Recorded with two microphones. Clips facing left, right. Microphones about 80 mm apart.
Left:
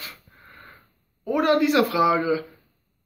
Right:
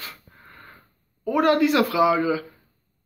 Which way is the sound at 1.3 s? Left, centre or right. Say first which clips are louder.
Right 1 dB; centre.